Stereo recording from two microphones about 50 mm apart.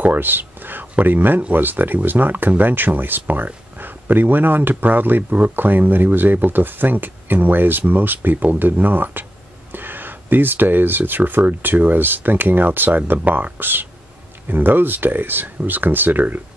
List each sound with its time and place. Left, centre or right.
0.0 s speech: right